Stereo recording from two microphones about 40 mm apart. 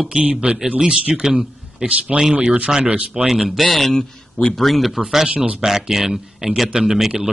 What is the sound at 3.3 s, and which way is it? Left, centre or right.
Speech, centre.